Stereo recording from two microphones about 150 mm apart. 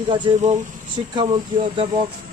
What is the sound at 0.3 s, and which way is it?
Speech, 35° right (ahead or behind).